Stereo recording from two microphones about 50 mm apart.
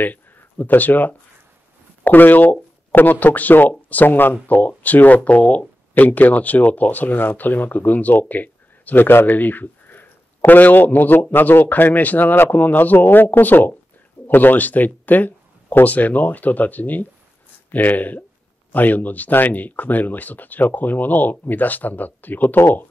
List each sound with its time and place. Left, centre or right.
0.0 s speech: left